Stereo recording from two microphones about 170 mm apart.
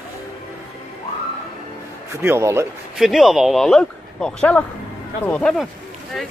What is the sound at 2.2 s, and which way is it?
Speech, 15° right (ahead or behind).